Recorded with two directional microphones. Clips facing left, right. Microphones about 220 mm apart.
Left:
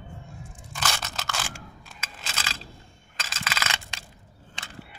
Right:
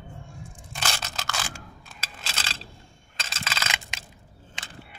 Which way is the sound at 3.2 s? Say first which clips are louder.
Left 1 dB; 30° right (ahead or behind).